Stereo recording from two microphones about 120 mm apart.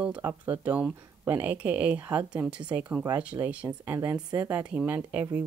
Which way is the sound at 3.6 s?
20° right (ahead or behind).